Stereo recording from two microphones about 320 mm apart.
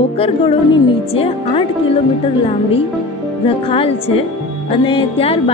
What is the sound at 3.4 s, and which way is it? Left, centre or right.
Speech, centre.